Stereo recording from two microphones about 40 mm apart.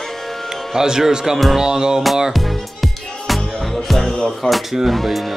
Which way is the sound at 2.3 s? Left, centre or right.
Centre.